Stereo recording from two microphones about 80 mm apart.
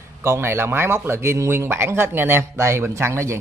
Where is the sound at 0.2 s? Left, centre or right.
Right.